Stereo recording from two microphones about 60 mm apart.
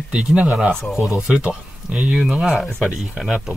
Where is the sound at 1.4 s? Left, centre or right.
Right.